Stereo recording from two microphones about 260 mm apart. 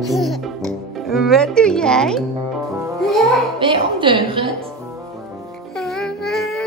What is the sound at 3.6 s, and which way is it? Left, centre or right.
Speech, centre.